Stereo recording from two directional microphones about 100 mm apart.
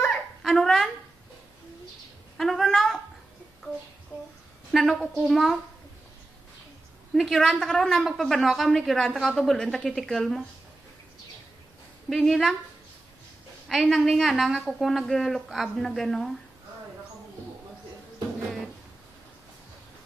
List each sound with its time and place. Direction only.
0.0 s a sound: centre (ahead or behind)
2.3 s a woman's voice: 5° left (ahead or behind)
4.7 s a woman's voice: centre (ahead or behind)
7.2 s a woman's voice: 5° left (ahead or behind)
12.1 s a woman's voice: centre (ahead or behind)
13.7 s a woman's voice: centre (ahead or behind)